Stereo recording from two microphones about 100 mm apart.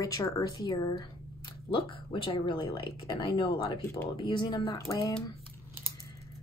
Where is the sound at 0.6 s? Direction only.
45° left (ahead or behind).